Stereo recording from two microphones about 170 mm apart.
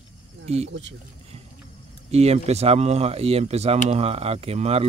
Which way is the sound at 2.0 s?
40° right (ahead or behind).